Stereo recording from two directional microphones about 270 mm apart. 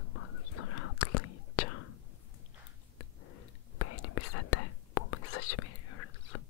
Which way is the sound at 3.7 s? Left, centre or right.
Left.